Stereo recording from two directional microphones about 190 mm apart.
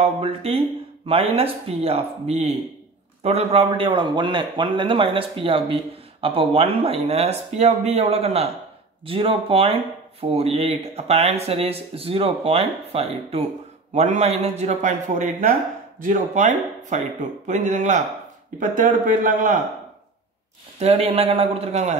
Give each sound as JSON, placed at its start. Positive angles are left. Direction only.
{"t": 0.0, "sound": "a man's voice", "side_deg": -30}
{"t": 20.8, "sound": "speech", "side_deg": -35}